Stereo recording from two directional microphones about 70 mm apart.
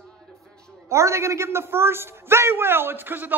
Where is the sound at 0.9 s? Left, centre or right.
Right.